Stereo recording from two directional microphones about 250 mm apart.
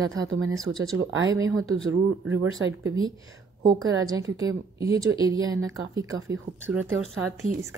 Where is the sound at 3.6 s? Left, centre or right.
Centre.